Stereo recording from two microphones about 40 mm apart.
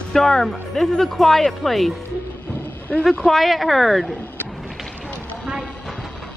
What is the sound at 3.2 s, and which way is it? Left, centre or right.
Speech, centre.